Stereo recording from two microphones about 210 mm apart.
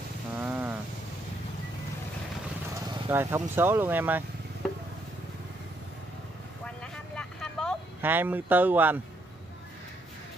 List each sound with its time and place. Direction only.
0.4 s a sound: 10° right (ahead or behind)
2.9 s speech: 10° right (ahead or behind)
6.6 s vehicle: 5° left (ahead or behind)
8.0 s speech: 10° right (ahead or behind)